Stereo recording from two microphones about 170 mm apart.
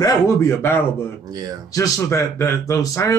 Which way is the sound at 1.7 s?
20° left (ahead or behind).